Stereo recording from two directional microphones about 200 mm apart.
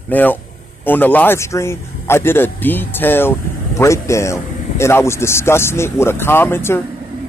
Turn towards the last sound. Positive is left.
turn(degrees=10)  # may be behind; listen again after turning